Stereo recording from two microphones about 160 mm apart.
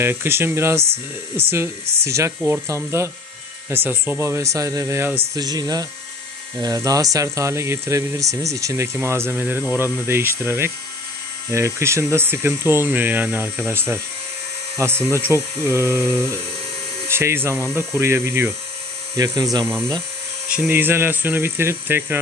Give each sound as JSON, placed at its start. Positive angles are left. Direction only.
{"t": 0.0, "sound": "speech", "side_deg": -15}